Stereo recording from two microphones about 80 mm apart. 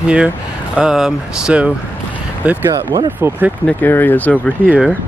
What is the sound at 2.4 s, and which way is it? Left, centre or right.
Speech, centre.